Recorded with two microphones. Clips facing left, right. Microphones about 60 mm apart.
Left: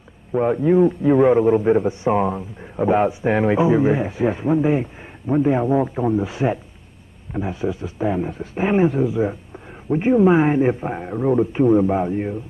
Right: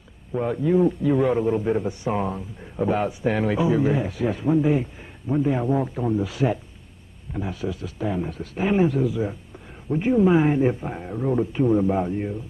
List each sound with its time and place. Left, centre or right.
0.3 s a man's voice: left